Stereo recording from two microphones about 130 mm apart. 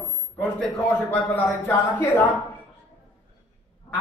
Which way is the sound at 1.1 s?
15° left (ahead or behind).